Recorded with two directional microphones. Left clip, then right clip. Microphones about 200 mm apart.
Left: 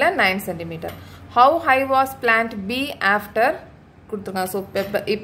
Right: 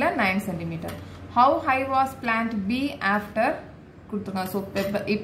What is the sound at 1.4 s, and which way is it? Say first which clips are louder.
A woman's voice: left 5 dB; 50° left (ahead or behind).